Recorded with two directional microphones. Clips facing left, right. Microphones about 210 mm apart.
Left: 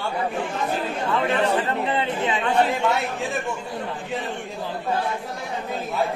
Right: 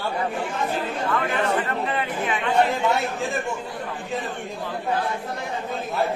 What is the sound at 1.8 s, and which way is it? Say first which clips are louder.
Speech: left 2 dB; 25° left (ahead or behind).